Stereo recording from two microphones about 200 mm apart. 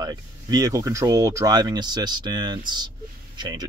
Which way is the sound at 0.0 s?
20° right (ahead or behind).